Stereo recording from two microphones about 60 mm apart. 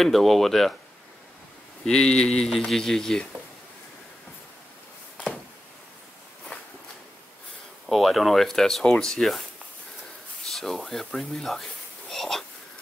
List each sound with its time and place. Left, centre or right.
0.0 s speech: centre
1.9 s speech: centre
7.9 s speech: centre
10.4 s speech: centre